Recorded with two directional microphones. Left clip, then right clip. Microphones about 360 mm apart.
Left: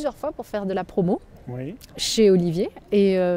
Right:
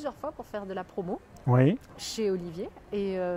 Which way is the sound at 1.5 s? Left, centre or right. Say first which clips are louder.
Right 10 dB; right.